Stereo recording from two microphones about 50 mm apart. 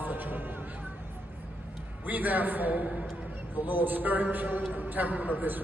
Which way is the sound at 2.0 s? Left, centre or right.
Right.